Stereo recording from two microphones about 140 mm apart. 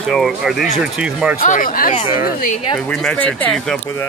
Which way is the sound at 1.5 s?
75° left (ahead or behind).